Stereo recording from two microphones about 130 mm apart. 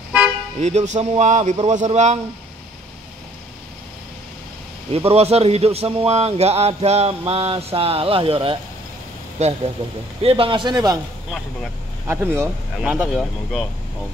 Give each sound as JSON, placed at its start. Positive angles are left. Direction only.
{"t": 0.6, "sound": "a man's voice", "side_deg": -60}
{"t": 4.9, "sound": "a man's voice", "side_deg": -50}
{"t": 9.4, "sound": "a man's voice", "side_deg": -60}
{"t": 10.2, "sound": "speech", "side_deg": -45}
{"t": 12.1, "sound": "speech", "side_deg": -20}